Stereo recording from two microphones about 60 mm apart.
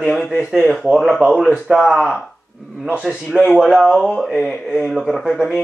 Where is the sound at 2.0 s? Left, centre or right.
Centre.